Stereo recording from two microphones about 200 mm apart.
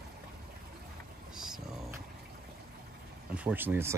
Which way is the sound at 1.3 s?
5° right (ahead or behind).